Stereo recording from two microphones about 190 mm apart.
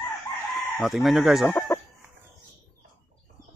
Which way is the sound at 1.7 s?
10° left (ahead or behind).